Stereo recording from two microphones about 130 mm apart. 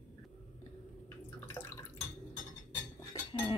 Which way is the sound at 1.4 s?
15° left (ahead or behind).